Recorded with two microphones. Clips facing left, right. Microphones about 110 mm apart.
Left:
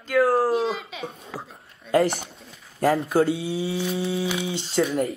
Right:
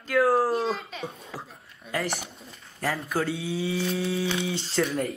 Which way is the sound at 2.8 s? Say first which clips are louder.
Left 8 dB; 35° left (ahead or behind).